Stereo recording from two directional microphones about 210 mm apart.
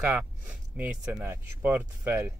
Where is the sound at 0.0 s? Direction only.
5° right (ahead or behind).